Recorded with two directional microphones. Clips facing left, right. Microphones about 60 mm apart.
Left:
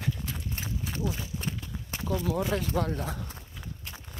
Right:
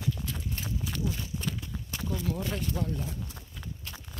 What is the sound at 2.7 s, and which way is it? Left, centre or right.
Speech, left.